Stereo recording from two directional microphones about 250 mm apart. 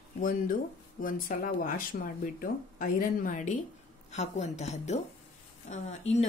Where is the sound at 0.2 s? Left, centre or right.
Left.